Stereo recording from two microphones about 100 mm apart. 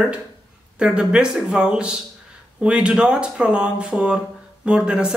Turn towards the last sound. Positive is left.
turn(degrees=-10)  # may be behind; listen again after turning